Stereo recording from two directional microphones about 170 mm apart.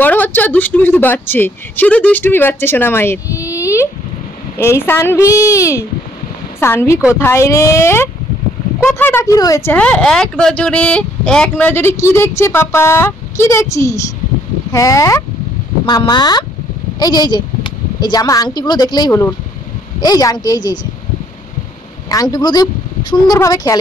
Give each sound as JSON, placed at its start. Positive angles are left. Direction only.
{"t": 0.0, "sound": "speech", "side_deg": 10}
{"t": 3.5, "sound": "a sound", "side_deg": 15}
{"t": 4.6, "sound": "a woman's voice", "side_deg": 15}
{"t": 22.1, "sound": "a woman's voice", "side_deg": 20}